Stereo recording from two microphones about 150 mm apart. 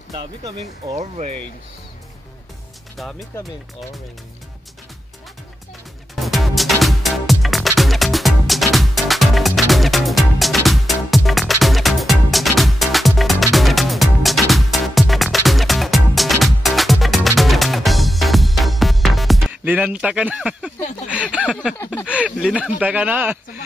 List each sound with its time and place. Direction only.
0.1 s speech: 30° right (ahead or behind)
0.9 s speech: 50° right (ahead or behind)
3.0 s speech: centre (ahead or behind)
6.1 s music: centre (ahead or behind)
19.6 s speech: 10° right (ahead or behind)
21.7 s a sound: 20° left (ahead or behind)
22.0 s speech: 10° right (ahead or behind)